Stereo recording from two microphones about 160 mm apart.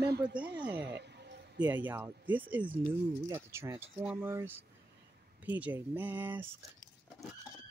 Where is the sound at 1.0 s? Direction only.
90° right.